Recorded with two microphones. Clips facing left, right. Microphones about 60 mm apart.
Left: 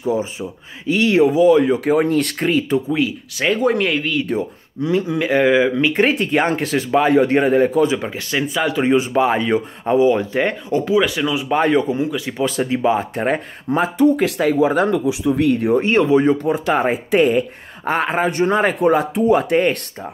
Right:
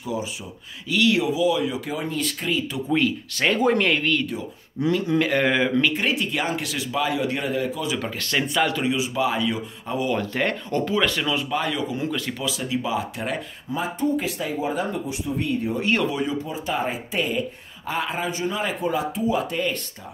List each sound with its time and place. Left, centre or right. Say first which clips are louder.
0.0 s speech: left 8 dB; left
2.9 s speech: left 2 dB; centre
5.9 s speech: left 8 dB; left
7.9 s speech: left 5 dB; centre
8.3 s speech: left 2 dB; centre
8.8 s speech: left 8 dB; left
9.9 s speech: left 9 dB; left
11.4 s speech: left 9 dB; left
13.7 s speech: left 10 dB; left
15.8 s speech: left 7 dB; left
16.3 s speech: left 10 dB; left